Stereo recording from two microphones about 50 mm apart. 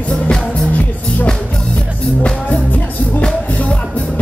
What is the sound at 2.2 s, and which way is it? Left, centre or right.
Music, left.